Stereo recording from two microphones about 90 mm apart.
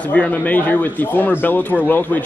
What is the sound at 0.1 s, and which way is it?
A man's voice, 15° left (ahead or behind).